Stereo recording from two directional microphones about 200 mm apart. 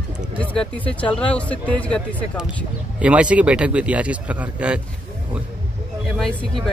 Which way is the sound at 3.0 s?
5° right (ahead or behind).